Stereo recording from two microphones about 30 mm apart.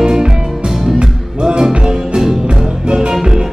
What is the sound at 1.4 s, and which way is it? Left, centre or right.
Music, right.